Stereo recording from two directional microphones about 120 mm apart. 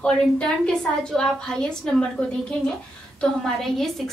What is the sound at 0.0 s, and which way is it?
A woman's voice, 5° left (ahead or behind).